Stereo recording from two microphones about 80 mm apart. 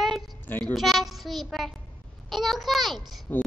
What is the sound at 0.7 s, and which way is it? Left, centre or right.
Child singing, centre.